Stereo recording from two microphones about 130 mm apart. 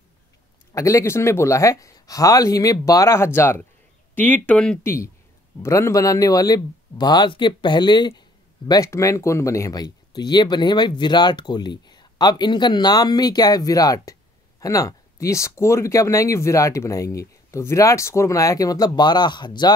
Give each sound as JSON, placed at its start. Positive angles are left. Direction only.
{"t": 0.7, "sound": "speech", "side_deg": 25}
{"t": 4.8, "sound": "speech", "side_deg": 20}